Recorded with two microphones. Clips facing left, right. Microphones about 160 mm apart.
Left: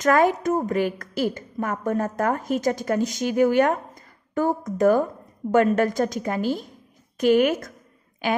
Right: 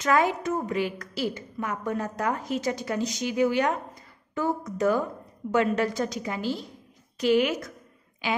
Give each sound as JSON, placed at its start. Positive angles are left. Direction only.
{"t": 0.0, "sound": "a woman's voice", "side_deg": 50}